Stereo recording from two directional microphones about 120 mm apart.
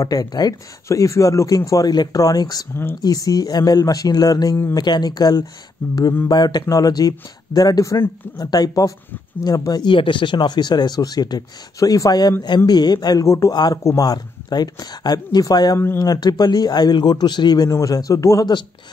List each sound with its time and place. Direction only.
0.0 s speech: 30° left (ahead or behind)
2.7 s speech: 20° left (ahead or behind)
3.0 s speech: 30° left (ahead or behind)
5.8 s mantra: 15° left (ahead or behind)
6.2 s speech: 35° left (ahead or behind)
18.4 s speech: 40° left (ahead or behind)